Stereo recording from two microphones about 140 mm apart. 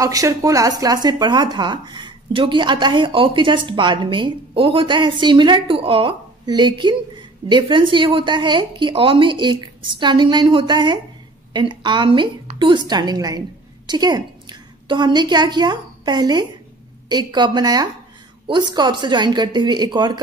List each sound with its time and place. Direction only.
0.0 s a woman's voice: 25° right (ahead or behind)